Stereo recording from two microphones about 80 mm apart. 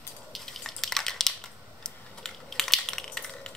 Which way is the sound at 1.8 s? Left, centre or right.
Centre.